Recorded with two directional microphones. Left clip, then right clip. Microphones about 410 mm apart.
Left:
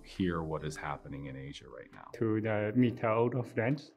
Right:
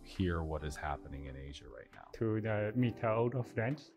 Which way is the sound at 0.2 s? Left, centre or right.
Right.